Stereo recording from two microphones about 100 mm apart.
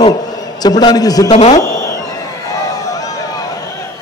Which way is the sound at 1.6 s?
35° left (ahead or behind).